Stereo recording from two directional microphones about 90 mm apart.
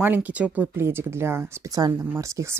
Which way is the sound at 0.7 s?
25° right (ahead or behind).